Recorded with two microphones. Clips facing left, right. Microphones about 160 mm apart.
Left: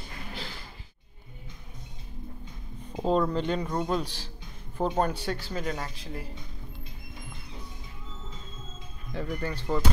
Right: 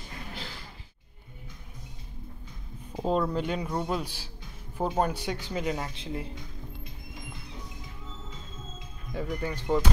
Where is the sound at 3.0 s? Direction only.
5° right (ahead or behind); by 6.3 s 25° right (ahead or behind).